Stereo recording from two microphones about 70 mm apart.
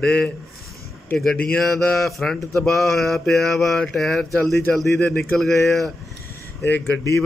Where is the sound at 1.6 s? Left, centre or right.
Centre.